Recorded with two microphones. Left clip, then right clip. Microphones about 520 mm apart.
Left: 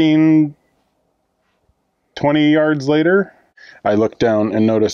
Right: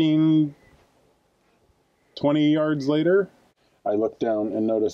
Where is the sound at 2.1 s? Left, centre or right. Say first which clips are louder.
Left 7 dB; left.